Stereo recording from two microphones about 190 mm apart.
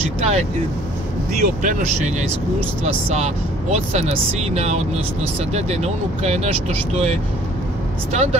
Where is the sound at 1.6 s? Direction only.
40° right (ahead or behind).